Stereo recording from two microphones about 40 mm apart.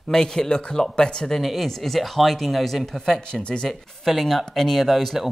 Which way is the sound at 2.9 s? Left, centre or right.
Centre.